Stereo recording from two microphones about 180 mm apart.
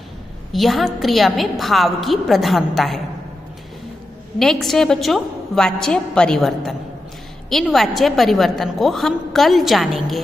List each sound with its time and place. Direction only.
0.5 s a woman's voice: centre (ahead or behind)
4.4 s a woman's voice: centre (ahead or behind)